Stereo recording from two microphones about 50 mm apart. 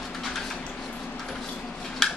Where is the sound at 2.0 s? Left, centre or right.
Centre.